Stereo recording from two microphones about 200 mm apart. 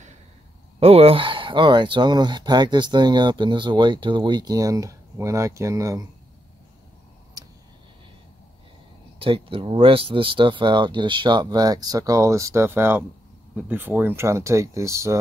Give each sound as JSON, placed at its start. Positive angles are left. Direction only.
{"t": 0.7, "sound": "speech", "side_deg": -30}
{"t": 9.2, "sound": "speech", "side_deg": -25}